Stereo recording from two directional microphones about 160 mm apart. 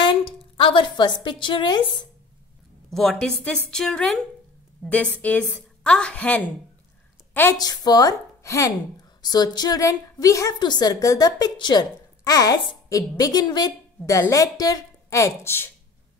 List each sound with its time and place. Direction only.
0.6 s a woman's voice: 30° left (ahead or behind)
2.9 s a woman's voice: centre (ahead or behind)
7.5 s a woman's voice: 25° left (ahead or behind)